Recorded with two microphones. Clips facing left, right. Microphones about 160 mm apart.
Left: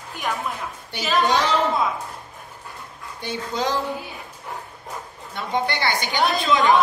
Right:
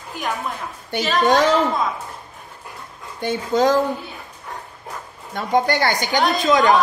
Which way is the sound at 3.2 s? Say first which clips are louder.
Right 8 dB; 50° right (ahead or behind).